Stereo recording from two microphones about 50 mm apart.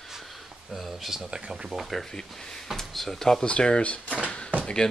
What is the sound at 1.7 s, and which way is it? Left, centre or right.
Speech, centre.